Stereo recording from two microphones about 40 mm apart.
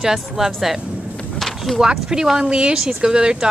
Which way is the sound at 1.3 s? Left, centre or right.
Centre.